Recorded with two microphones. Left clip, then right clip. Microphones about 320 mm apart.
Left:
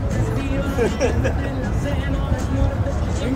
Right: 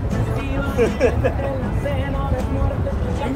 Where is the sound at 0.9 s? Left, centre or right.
Right.